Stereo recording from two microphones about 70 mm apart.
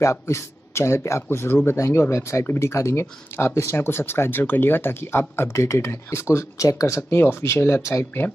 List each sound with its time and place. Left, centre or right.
0.0 s speech: left
7.0 s speech: left